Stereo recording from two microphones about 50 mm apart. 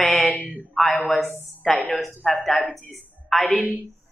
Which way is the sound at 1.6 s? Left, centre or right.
Left.